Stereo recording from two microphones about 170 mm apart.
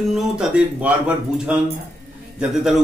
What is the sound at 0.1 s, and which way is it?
Speech, 5° right (ahead or behind).